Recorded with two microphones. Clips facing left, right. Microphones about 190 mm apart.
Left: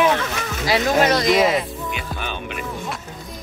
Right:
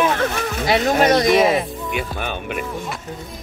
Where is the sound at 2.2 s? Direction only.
50° right (ahead or behind).